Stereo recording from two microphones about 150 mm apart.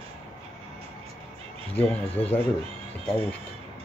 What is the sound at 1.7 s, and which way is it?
Speech, 10° left (ahead or behind).